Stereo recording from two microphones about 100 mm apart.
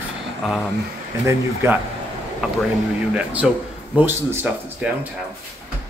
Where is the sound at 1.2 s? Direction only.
25° right (ahead or behind).